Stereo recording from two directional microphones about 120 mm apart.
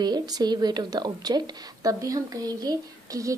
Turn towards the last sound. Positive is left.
turn(degrees=-30)  # may be behind; listen again after turning